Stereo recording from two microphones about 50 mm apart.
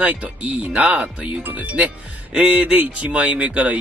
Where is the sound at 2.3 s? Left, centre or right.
Right.